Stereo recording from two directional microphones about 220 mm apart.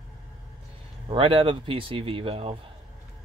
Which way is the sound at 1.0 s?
25° right (ahead or behind).